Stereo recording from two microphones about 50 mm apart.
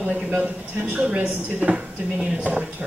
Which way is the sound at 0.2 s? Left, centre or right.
Centre.